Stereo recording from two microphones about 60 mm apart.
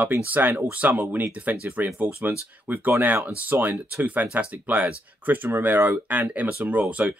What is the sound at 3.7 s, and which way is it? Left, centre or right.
Speech, centre.